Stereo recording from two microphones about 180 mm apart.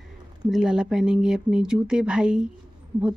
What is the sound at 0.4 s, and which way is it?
Speech, 5° right (ahead or behind).